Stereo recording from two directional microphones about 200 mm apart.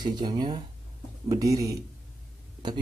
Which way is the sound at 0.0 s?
20° right (ahead or behind).